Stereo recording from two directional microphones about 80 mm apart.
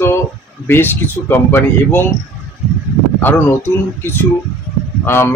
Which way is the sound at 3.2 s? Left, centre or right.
Left.